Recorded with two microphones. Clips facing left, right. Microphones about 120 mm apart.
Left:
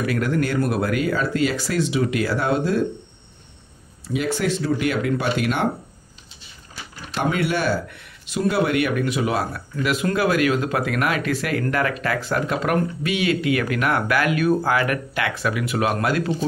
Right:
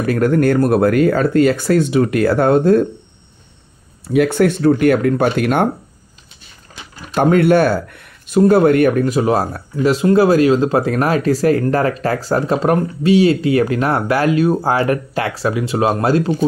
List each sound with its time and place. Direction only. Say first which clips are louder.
0.0 s speech: right 8 dB; 45° right (ahead or behind)
4.1 s speech: right 9 dB; 55° right (ahead or behind)
7.2 s speech: right 10 dB; 50° right (ahead or behind); by 16.3 s 30° right (ahead or behind)